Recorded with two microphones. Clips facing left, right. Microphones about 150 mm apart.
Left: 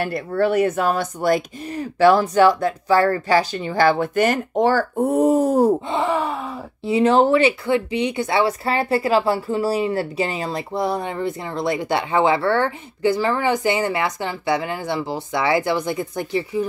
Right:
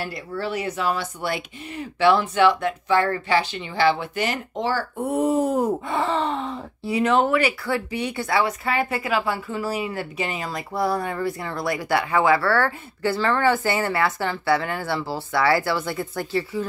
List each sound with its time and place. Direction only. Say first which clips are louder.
0.0 s speech: left 8 dB; 55° left (ahead or behind); by 5.7 s 40° left (ahead or behind)
5.9 s speech: left 2 dB; 15° left (ahead or behind)
6.8 s speech: left 5 dB; 25° left (ahead or behind)